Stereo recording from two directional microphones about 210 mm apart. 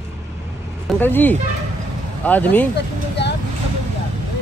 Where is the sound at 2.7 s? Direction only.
55° left (ahead or behind).